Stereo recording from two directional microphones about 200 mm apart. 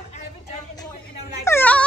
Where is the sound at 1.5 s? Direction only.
10° left (ahead or behind).